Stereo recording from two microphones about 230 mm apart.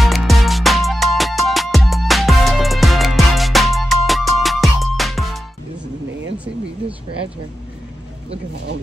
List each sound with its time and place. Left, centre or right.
0.0 s music: centre